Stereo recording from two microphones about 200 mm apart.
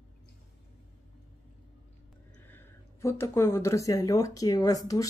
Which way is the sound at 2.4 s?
10° left (ahead or behind).